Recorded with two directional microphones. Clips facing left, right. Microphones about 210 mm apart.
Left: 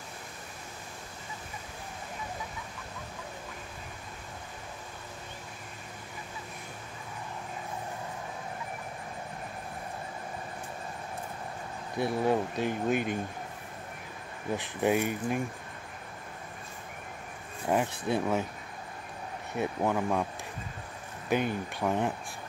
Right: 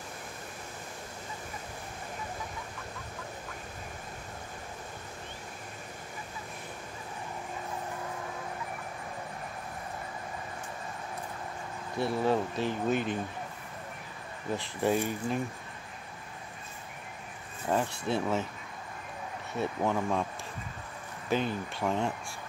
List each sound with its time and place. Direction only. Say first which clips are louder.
12.0 s speech: left 1 dB; 15° left (ahead or behind)
14.6 s speech: left 1 dB; 15° left (ahead or behind)
17.6 s speech: left 1 dB; 15° left (ahead or behind)
19.5 s speech: left 1 dB; 15° left (ahead or behind)
21.3 s speech: left 1 dB; 15° left (ahead or behind)